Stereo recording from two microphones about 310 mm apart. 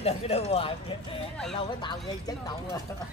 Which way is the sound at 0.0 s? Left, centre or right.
Centre.